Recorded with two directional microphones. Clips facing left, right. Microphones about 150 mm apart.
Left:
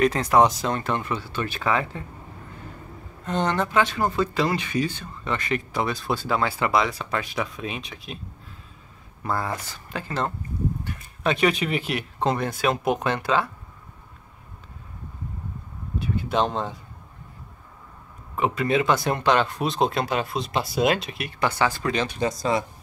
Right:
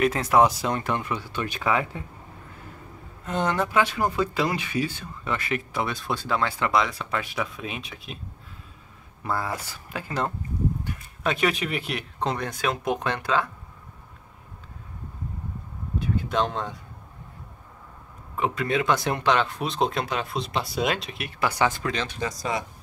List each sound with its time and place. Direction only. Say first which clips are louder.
0.0 s speech: left 1 dB; 5° right (ahead or behind)
3.3 s speech: left 1 dB; 5° right (ahead or behind)
9.2 s speech: left 1 dB; 5° right (ahead or behind)
16.0 s speech: left 2 dB; 5° left (ahead or behind)
18.4 s speech: left 3 dB; 5° left (ahead or behind)
21.5 s speech: even; 20° right (ahead or behind)
21.8 s speech: left 4 dB; 10° left (ahead or behind)
22.2 s speech: left 6 dB; 30° left (ahead or behind)